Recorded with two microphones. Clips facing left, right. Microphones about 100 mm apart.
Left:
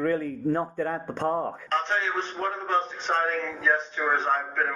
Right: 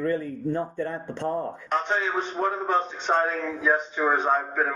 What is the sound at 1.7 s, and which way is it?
A man's voice, 10° right (ahead or behind).